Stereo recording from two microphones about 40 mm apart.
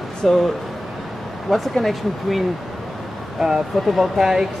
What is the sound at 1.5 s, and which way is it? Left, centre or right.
Speech, centre.